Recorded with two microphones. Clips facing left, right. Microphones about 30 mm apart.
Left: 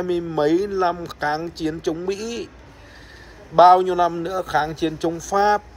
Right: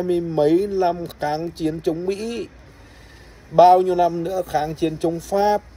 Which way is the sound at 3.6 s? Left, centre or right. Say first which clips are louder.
Even; left.